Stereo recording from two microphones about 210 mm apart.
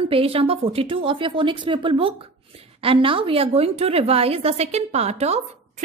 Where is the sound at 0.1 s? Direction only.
25° right (ahead or behind).